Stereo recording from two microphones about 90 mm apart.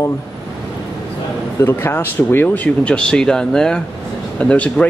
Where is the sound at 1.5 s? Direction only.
25° left (ahead or behind).